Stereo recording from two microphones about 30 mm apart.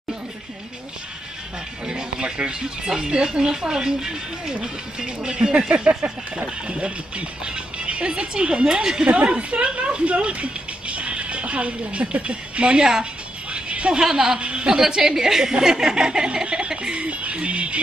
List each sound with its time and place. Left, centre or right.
1.9 s speech: right
9.0 s speech: right
13.5 s a sound: right
13.9 s speech: right
14.4 s a woman's voice: right
14.7 s a woman's voice: right